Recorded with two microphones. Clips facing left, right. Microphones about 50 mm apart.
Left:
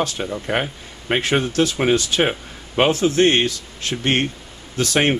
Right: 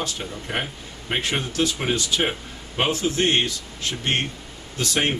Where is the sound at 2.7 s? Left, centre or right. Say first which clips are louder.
Left 6 dB; left.